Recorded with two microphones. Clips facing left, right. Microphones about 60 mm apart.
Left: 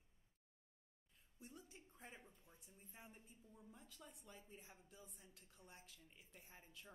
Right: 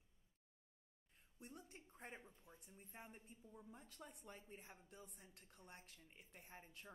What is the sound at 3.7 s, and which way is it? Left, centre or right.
A woman's voice, right.